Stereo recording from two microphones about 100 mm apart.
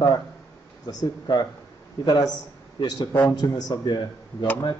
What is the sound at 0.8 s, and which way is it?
A man's voice, 40° left (ahead or behind).